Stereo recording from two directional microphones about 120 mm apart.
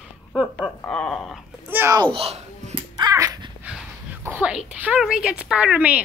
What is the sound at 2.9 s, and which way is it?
Finger snapping, 30° right (ahead or behind).